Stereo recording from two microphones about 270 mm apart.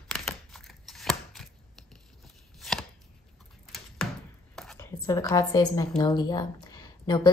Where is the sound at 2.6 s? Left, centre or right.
Centre.